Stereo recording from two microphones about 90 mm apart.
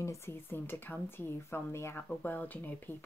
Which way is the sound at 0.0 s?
30° left (ahead or behind).